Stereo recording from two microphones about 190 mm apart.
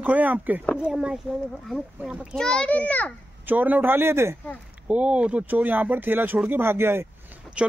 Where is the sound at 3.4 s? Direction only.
10° right (ahead or behind).